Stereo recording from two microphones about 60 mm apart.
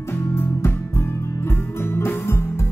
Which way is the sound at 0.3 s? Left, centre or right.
Left.